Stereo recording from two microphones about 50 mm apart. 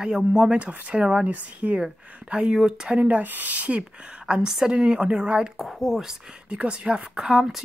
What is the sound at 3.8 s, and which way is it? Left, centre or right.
Speech, centre.